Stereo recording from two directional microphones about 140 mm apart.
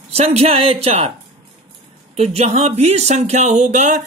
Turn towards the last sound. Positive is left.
turn(degrees=-60)  # may be behind; listen again after turning